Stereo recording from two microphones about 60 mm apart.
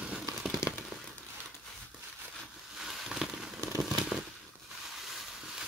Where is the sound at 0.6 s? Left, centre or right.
Left.